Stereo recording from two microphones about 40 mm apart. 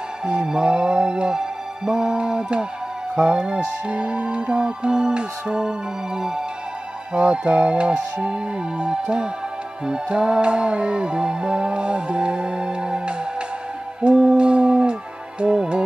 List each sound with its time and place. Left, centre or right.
0.2 s music: right
7.2 s music: right
14.3 s a sound: right
15.5 s music: right